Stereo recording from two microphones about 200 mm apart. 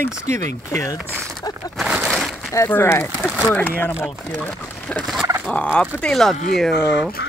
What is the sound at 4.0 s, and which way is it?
Fowl, centre (ahead or behind).